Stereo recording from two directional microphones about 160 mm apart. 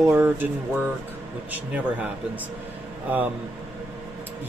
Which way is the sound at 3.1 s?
10° right (ahead or behind).